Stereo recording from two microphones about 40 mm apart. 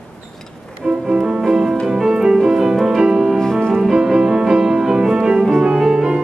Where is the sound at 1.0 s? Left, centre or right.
Right.